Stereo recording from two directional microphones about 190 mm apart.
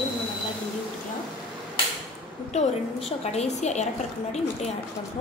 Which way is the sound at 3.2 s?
35° left (ahead or behind).